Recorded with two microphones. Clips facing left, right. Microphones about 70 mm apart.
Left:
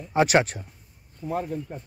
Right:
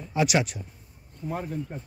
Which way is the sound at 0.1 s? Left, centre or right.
Left.